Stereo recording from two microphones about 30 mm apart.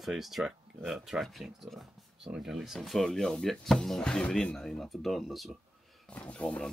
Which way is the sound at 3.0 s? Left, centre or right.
Left.